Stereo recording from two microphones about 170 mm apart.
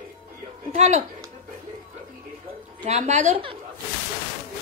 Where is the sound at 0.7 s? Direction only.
40° right (ahead or behind).